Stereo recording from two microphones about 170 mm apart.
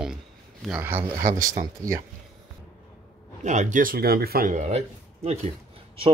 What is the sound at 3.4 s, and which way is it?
Speech, 45° right (ahead or behind).